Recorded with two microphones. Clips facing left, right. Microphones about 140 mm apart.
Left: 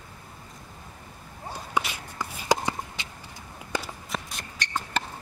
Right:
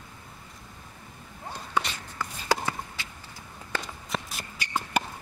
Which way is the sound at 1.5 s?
10° left (ahead or behind).